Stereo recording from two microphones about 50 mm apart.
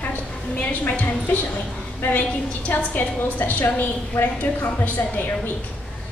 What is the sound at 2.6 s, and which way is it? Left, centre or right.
A woman's voice, left.